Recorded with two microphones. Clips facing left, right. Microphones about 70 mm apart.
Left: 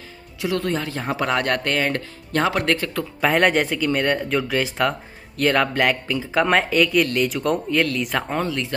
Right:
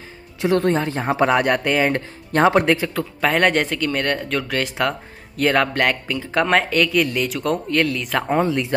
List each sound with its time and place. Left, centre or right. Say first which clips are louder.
0.4 s speech: right 5 dB; right
2.7 s speech: right 3 dB; centre
8.3 s speech: right 5 dB; centre